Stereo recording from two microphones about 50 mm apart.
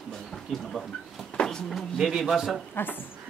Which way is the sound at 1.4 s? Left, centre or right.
Centre.